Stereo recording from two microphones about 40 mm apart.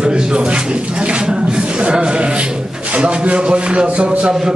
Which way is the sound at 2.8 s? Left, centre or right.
Right.